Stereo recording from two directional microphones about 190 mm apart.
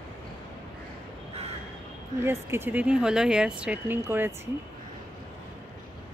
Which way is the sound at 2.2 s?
10° right (ahead or behind).